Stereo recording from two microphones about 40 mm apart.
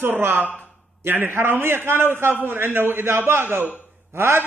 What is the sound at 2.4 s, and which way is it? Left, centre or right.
A man's voice, right.